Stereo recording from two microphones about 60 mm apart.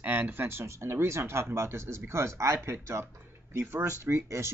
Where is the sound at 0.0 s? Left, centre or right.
Right.